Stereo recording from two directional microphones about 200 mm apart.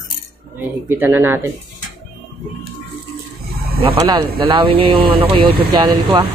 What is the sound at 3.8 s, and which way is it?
Speech, 25° right (ahead or behind).